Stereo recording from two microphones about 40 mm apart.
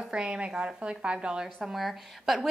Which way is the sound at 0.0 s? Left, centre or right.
Right.